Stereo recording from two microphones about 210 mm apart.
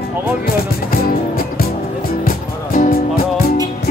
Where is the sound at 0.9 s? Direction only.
45° left (ahead or behind).